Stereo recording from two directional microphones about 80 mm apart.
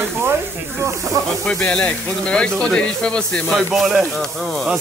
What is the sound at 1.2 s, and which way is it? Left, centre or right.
Speech, right.